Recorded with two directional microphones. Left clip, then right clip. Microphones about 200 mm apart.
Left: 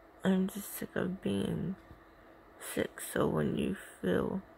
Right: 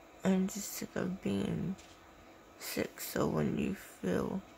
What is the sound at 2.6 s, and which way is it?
Speech, 15° left (ahead or behind).